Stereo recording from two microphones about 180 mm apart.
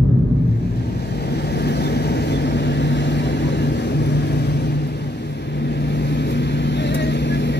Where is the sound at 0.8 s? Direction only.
65° left (ahead or behind).